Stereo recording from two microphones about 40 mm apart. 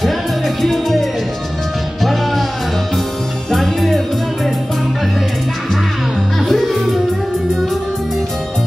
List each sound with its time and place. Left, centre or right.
0.6 s music: centre
3.5 s music: centre
6.5 s music: centre